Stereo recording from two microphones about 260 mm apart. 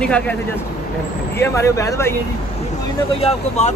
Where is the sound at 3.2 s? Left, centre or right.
Left.